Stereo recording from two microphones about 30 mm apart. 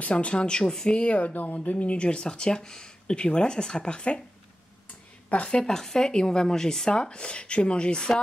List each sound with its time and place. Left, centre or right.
0.0 s speech: left
0.7 s speech: left
0.9 s speech: left
1.3 s speech: left
1.6 s speech: left
2.0 s speech: left
2.2 s speech: left
5.5 s speech: left